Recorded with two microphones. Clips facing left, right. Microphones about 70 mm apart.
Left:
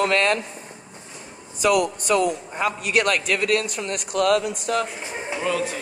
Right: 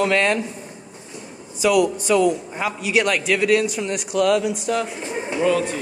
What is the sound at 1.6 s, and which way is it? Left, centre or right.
A man's voice, left.